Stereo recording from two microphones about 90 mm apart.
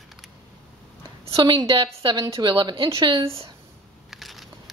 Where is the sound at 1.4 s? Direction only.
65° right (ahead or behind).